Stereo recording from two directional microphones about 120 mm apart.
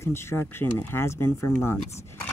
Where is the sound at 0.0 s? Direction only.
20° left (ahead or behind).